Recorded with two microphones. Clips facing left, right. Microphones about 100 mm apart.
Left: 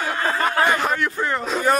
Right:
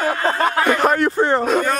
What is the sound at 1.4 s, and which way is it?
Speech, 55° right (ahead or behind).